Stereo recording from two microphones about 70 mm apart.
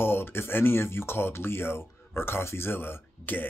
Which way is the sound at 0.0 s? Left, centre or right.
Left.